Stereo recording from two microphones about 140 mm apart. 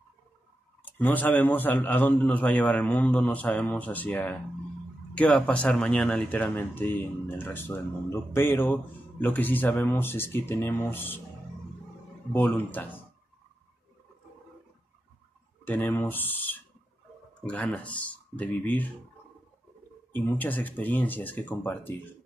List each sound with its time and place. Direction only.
0.9 s speech: 10° left (ahead or behind)
12.3 s speech: 15° left (ahead or behind)
15.6 s speech: 15° left (ahead or behind)
20.2 s speech: 15° left (ahead or behind)